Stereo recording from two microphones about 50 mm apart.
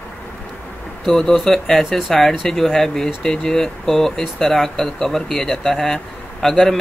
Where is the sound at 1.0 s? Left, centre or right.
Centre.